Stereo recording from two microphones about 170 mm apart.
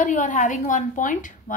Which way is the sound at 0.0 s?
50° left (ahead or behind).